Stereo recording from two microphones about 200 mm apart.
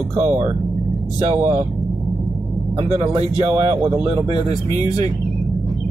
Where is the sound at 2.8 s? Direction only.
30° right (ahead or behind).